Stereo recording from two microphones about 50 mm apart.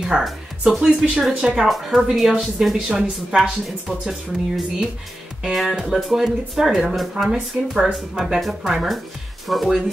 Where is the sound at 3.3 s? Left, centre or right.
Centre.